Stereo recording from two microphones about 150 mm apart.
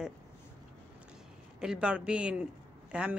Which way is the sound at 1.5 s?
5° right (ahead or behind).